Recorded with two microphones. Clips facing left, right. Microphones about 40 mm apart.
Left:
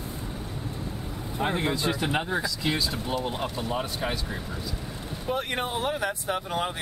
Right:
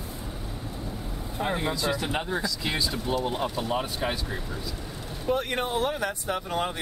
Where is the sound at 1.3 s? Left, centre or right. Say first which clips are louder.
Left 1 dB; centre.